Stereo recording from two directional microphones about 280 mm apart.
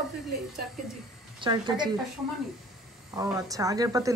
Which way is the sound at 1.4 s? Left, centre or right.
Centre.